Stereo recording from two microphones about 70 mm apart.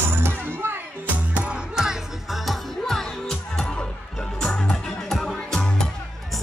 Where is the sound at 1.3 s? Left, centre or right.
Centre.